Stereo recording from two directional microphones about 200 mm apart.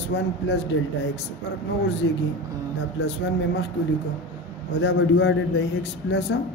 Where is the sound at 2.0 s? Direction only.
80° left.